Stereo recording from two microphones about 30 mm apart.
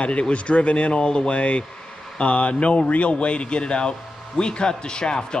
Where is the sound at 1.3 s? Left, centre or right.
Left.